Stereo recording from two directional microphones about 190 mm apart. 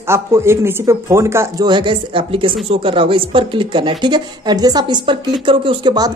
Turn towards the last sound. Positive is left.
turn(degrees=-20)  # may be behind; listen again after turning